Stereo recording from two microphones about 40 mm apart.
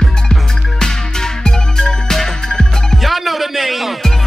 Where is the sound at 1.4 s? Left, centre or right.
Centre.